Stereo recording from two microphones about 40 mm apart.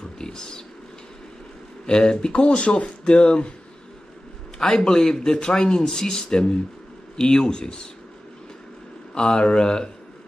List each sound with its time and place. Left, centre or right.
0.2 s wild animals: centre
1.9 s speech: left
4.6 s speech: centre
9.1 s speech: left